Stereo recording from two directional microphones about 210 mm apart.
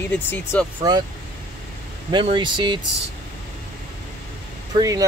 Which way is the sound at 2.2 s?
20° right (ahead or behind).